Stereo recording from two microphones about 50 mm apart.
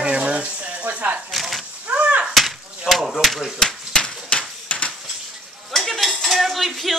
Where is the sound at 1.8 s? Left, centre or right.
Right.